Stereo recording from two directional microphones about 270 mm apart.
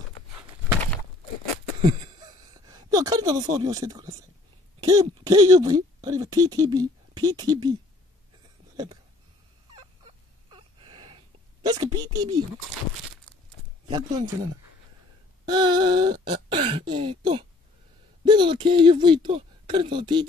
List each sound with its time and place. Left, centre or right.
1.8 s speech: centre
9.8 s fowl: centre
13.8 s speech: centre